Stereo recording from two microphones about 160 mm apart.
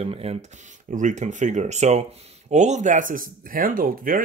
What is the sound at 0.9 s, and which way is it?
Speech, 50° right (ahead or behind).